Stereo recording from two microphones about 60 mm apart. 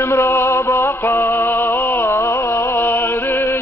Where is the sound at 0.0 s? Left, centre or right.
Left.